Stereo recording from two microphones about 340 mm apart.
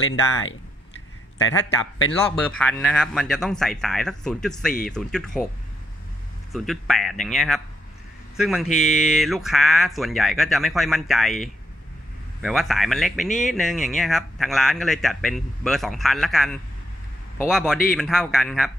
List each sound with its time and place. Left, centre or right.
0.0 s speech: left
1.8 s speech: left
2.4 s speech: centre
6.5 s speech: centre